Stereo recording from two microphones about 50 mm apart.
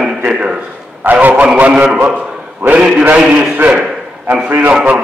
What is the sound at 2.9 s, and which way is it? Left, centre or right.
Speech, right.